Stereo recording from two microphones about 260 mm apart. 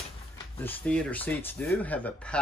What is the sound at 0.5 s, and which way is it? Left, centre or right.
Speech, centre.